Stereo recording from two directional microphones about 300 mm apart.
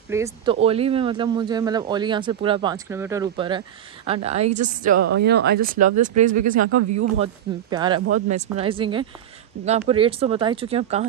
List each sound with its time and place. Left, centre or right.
0.1 s speech: centre
6.7 s speech: right
7.7 s speech: centre